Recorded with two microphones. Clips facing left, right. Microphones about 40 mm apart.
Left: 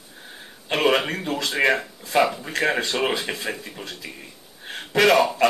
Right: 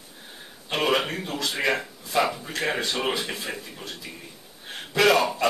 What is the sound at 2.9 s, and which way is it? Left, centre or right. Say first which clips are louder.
Speech: left 3 dB; left.